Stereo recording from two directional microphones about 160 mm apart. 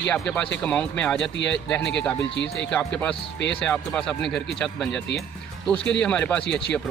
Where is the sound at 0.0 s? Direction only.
5° left (ahead or behind).